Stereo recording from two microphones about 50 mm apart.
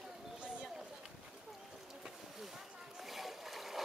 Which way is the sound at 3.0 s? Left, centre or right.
Centre.